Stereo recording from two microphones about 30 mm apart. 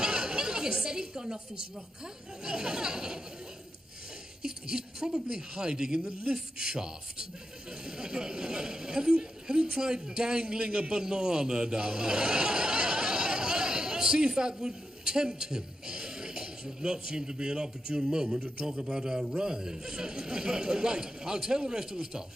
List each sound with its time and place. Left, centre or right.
0.0 s a sound: right
2.4 s speech: right
4.4 s a man's voice: right